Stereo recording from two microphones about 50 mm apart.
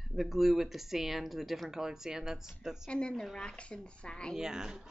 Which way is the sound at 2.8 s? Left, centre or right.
Left.